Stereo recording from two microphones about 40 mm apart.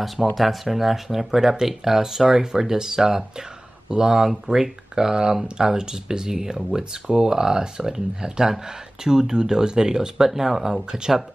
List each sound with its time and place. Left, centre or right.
0.0 s speech: centre
10.9 s speech: centre